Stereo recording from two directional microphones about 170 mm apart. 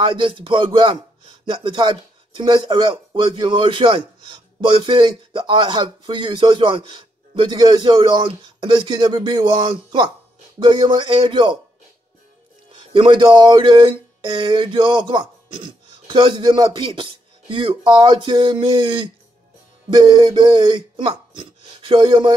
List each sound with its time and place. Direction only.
0.0 s speech: 30° right (ahead or behind)
12.9 s speech: 30° right (ahead or behind)